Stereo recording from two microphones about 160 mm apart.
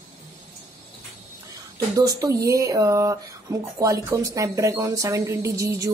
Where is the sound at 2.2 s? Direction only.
20° right (ahead or behind).